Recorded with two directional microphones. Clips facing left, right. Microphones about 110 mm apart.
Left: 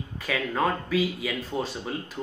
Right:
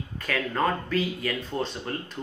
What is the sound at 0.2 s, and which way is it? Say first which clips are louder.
Speech: even; 5° left (ahead or behind).